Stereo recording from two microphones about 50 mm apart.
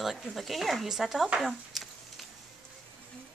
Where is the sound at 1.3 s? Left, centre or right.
Centre.